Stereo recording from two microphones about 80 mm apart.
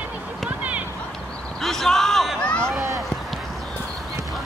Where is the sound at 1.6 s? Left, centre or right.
Centre.